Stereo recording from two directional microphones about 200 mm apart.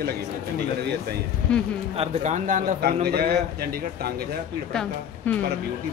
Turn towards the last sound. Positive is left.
turn(degrees=5)  # may be behind; listen again after turning